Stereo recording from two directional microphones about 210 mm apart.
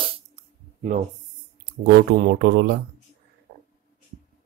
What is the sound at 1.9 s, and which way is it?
Speech, 45° right (ahead or behind).